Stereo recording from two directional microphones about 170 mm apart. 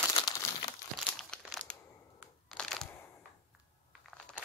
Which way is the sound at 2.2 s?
5° left (ahead or behind).